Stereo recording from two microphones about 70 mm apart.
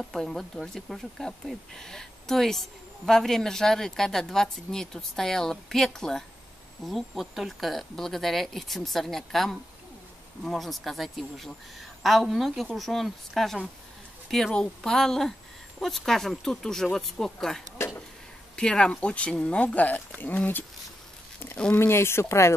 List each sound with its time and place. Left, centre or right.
0.0 s speech: centre
17.7 s a sound: left
18.6 s speech: centre
21.7 s speech: left